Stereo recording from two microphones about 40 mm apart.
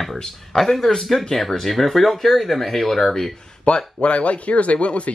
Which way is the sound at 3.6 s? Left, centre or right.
Left.